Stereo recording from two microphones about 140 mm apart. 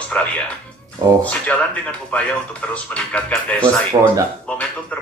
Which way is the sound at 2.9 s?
10° left (ahead or behind).